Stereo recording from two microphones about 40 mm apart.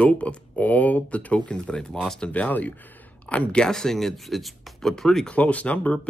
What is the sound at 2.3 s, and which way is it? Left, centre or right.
Speech, left.